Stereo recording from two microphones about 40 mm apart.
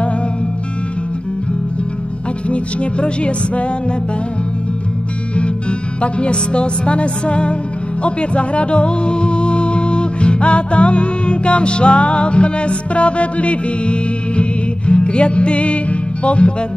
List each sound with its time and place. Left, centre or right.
2.5 s music: left
5.3 s music: left